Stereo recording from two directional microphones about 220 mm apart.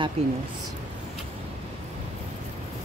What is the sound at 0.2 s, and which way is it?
Speech, 25° right (ahead or behind).